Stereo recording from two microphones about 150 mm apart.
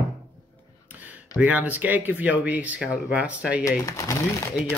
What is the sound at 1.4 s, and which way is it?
Speech, 10° right (ahead or behind).